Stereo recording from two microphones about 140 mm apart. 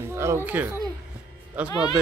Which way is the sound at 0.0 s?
20° right (ahead or behind).